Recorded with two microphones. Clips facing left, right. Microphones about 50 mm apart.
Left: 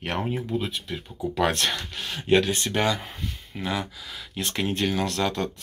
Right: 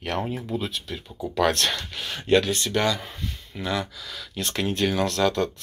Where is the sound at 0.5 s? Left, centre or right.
Centre.